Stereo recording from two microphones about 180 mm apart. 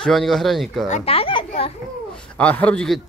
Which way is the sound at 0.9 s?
30° left (ahead or behind).